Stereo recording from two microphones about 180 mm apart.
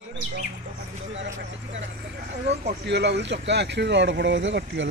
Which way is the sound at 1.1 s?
85° right.